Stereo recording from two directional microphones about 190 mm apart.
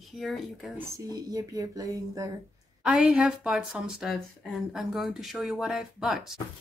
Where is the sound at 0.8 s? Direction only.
20° right (ahead or behind).